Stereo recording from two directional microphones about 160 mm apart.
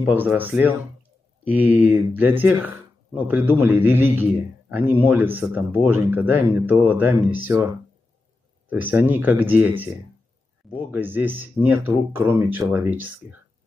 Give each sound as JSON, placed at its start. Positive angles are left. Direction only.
{"t": 0.1, "sound": "speech", "side_deg": -10}
{"t": 8.6, "sound": "speech", "side_deg": -10}